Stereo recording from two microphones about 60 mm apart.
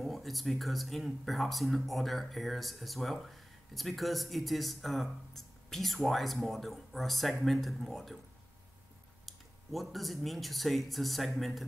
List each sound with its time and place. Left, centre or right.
0.0 s speech: centre
9.2 s speech: centre